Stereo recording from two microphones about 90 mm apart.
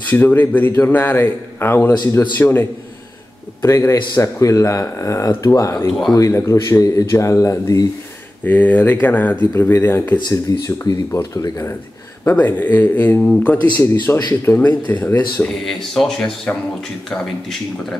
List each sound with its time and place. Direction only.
0.1 s a man's voice: 20° left (ahead or behind); by 7.8 s 40° left (ahead or behind)
8.5 s a man's voice: 20° left (ahead or behind)
10.5 s speech: 40° left (ahead or behind)
11.1 s a man's voice: 30° left (ahead or behind)
14.1 s a man's voice: 25° left (ahead or behind)
15.4 s speech: 5° left (ahead or behind)